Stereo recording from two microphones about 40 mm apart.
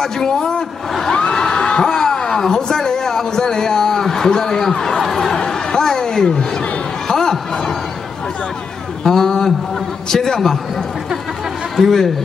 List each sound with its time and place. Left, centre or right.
0.0 s a man's voice: centre
1.1 s a sound: centre
2.4 s a man's voice: centre
5.5 s a sound: centre
7.1 s music: centre
9.0 s a man's voice: centre
11.8 s speech: centre